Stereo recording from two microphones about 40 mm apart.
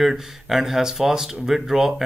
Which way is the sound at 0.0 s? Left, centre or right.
Centre.